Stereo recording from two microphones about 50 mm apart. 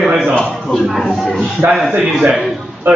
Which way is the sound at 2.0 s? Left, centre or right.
Centre.